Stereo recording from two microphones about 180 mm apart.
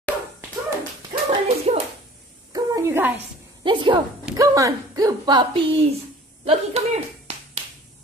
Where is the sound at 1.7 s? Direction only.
35° right (ahead or behind).